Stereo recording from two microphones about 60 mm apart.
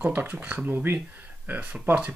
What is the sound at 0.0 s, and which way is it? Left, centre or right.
Speech, right.